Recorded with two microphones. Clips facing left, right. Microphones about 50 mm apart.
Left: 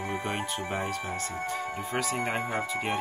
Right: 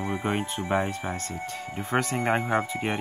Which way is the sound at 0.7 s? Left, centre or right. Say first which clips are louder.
Right 8 dB; right.